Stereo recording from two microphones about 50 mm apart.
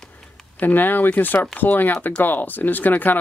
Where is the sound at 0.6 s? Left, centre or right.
Left.